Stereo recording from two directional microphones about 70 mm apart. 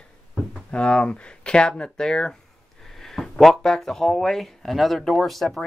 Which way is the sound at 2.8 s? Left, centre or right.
Centre.